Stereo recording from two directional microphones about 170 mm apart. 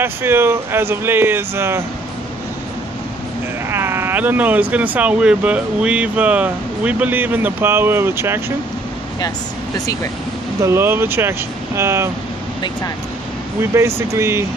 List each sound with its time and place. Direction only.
0.0 s speech: 15° right (ahead or behind)
3.7 s speech: 15° right (ahead or behind)
10.6 s speech: 15° right (ahead or behind)
13.6 s speech: 15° right (ahead or behind)